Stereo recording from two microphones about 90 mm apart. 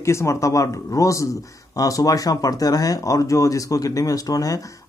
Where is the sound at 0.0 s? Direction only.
30° left (ahead or behind).